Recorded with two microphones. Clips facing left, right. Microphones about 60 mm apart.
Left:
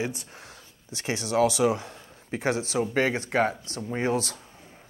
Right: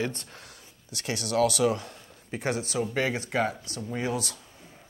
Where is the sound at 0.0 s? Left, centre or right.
Centre.